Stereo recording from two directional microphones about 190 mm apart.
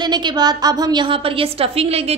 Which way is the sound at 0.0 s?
20° right (ahead or behind).